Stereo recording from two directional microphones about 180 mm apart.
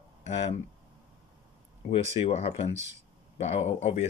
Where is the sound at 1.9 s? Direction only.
35° left (ahead or behind).